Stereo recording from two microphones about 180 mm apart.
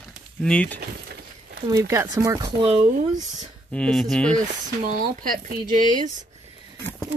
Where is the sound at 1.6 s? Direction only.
15° right (ahead or behind).